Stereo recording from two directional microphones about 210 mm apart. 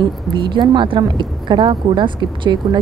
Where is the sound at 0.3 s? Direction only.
20° right (ahead or behind).